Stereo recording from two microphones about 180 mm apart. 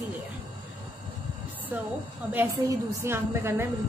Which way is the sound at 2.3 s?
10° right (ahead or behind).